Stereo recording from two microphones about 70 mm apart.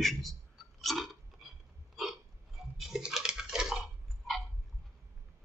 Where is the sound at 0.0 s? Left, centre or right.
Centre.